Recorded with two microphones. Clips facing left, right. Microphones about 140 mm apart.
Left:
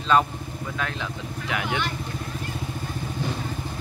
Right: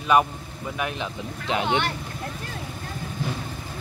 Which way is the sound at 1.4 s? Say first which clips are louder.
Right 4 dB; 25° right (ahead or behind).